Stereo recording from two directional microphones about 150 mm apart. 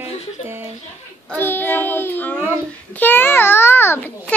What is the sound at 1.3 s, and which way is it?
Child singing, 15° left (ahead or behind).